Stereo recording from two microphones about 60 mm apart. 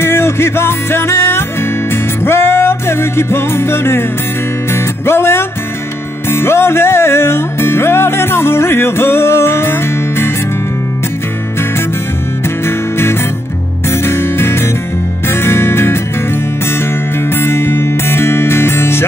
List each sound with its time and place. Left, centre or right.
0.0 s music: left
5.0 s music: left
13.8 s music: left
17.3 s music: left